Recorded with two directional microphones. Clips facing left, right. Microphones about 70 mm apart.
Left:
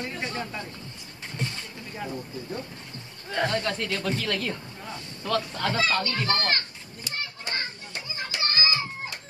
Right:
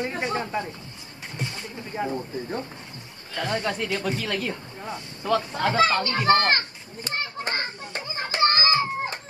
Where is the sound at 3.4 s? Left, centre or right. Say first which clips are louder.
Right 5 dB; centre.